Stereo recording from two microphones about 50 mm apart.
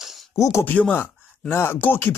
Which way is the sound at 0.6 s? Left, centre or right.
Left.